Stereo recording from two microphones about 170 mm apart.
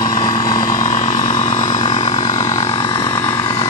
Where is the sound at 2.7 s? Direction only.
30° left (ahead or behind).